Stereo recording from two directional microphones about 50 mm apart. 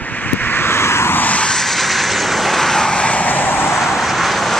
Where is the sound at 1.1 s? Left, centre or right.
Left.